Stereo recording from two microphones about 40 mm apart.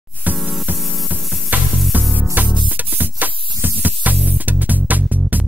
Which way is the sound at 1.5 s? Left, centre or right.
Right.